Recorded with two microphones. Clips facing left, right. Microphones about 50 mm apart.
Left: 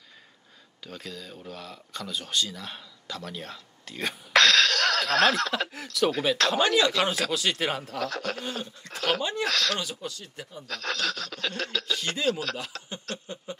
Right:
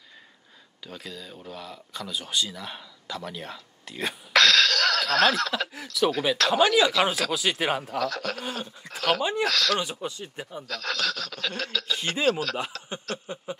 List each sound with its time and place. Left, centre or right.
0.8 s speech: centre
8.0 s speech: centre
8.4 s speech: centre
9.8 s speech: right
10.7 s a sound: centre
11.9 s speech: centre
12.7 s chuckle: centre
13.1 s speech: centre